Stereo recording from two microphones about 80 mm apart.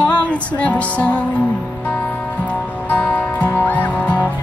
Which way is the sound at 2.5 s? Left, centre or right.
Centre.